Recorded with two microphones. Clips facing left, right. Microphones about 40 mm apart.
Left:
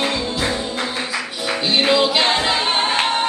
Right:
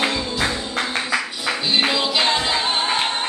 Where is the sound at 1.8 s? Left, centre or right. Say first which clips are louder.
Left 4 dB; centre.